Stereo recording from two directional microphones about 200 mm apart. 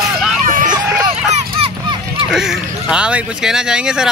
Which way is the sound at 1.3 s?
30° right (ahead or behind).